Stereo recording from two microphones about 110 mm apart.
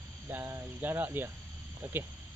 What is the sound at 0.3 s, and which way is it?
Speech, 20° right (ahead or behind).